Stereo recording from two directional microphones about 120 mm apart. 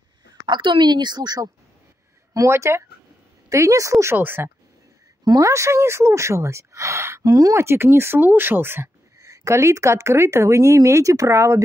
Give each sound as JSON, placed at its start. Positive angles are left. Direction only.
{"t": 0.3, "sound": "a woman's voice", "side_deg": -40}
{"t": 2.3, "sound": "speech", "side_deg": -25}
{"t": 5.2, "sound": "speech", "side_deg": -30}